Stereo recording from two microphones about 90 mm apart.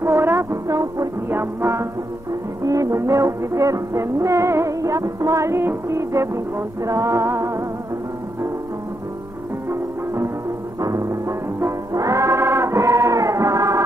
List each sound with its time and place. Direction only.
0.0 s music: 30° right (ahead or behind)
9.7 s music: 30° right (ahead or behind)